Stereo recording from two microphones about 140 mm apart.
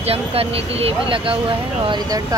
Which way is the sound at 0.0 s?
45° right (ahead or behind).